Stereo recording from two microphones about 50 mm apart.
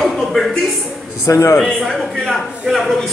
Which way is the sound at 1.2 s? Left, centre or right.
Left.